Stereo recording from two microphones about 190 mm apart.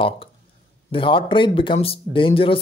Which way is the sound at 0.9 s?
25° left (ahead or behind).